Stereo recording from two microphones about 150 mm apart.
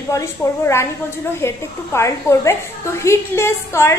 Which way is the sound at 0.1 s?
20° left (ahead or behind).